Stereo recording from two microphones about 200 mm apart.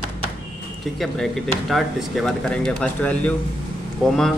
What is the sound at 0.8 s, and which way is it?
Speech, centre (ahead or behind).